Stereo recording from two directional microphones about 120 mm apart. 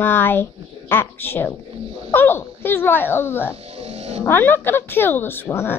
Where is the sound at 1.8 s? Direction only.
55° right (ahead or behind).